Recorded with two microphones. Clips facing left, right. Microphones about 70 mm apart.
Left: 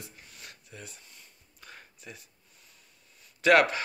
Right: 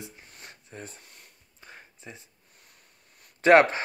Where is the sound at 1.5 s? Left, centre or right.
Right.